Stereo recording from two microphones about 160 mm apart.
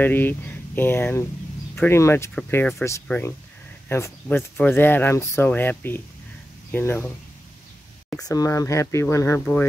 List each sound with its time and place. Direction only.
0.0 s speech: 10° left (ahead or behind)
8.2 s speech: 20° left (ahead or behind)